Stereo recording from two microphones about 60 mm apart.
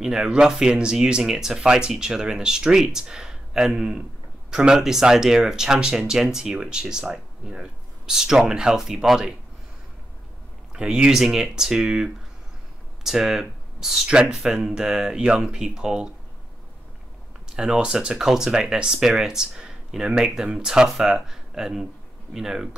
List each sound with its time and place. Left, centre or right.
0.0 s speech: centre
10.7 s speech: centre
17.5 s speech: centre